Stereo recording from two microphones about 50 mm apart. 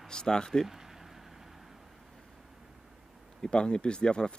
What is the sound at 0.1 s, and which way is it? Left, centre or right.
Speech, centre.